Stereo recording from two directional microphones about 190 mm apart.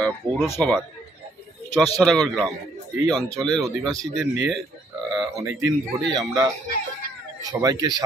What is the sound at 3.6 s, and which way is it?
Speech, 20° right (ahead or behind).